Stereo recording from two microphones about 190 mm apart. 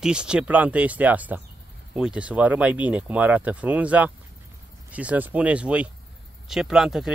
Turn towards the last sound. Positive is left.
turn(degrees=0)  # may be behind; listen again after turning